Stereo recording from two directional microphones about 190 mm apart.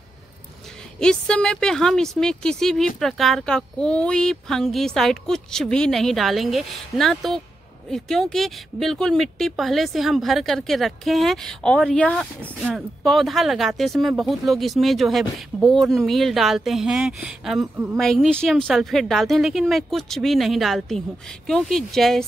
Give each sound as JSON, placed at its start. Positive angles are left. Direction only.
{"t": 0.9, "sound": "speech", "side_deg": 5}